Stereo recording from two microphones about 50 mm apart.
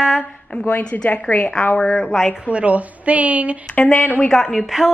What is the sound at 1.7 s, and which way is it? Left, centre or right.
Speech, centre.